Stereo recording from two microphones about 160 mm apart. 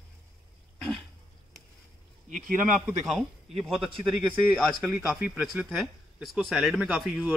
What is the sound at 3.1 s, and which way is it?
Speech, centre (ahead or behind).